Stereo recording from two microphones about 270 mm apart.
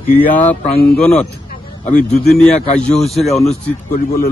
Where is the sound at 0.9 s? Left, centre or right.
Centre.